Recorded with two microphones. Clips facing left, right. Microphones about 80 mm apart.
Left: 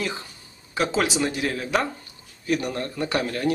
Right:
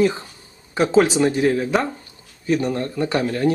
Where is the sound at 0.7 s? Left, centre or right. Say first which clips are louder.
Right 7 dB; right.